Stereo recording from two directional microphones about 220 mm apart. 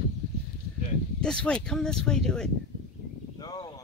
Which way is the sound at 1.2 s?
5° left (ahead or behind).